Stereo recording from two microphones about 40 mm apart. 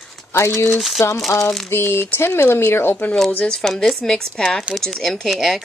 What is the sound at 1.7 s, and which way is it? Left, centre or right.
Speech, left.